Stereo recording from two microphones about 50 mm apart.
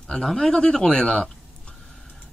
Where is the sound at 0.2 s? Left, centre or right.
Centre.